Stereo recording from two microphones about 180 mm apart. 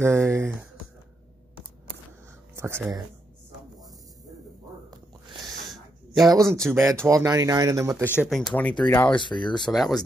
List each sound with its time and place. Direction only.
0.0 s speech: 15° right (ahead or behind)
2.5 s a sound: 15° right (ahead or behind)
5.4 s a sound: centre (ahead or behind)
6.7 s speech: 15° right (ahead or behind)
8.2 s speech: centre (ahead or behind)
9.1 s speech: 25° left (ahead or behind)
9.7 s speech: centre (ahead or behind)